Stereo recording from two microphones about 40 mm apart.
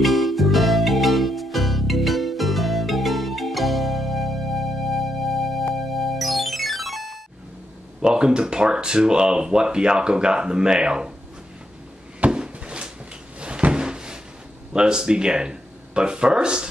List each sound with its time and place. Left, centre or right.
0.0 s music: centre
8.0 s speech: right
12.3 s a sound: right
13.4 s cupboard open or close: right
14.7 s speech: centre